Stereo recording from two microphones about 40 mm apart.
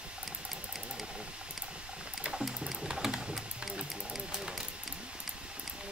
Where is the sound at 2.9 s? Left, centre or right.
Centre.